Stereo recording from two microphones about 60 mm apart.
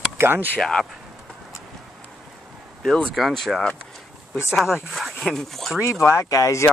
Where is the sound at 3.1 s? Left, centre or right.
Centre.